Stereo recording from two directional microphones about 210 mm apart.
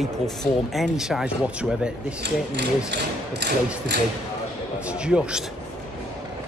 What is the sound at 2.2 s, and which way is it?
Speech, 55° right (ahead or behind).